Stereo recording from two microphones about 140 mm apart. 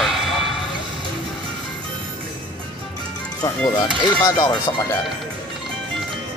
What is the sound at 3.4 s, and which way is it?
Speech, 30° left (ahead or behind).